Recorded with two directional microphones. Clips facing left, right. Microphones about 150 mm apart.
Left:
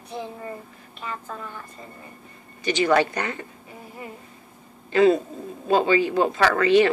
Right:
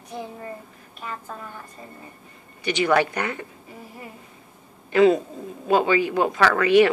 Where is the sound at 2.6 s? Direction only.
15° right (ahead or behind).